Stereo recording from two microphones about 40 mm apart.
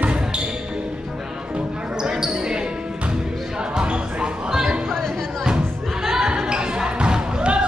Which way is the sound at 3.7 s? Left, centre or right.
Right.